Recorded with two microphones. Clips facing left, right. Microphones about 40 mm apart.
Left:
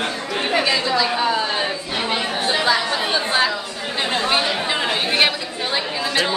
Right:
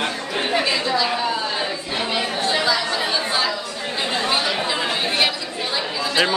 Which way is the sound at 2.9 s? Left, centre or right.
Left.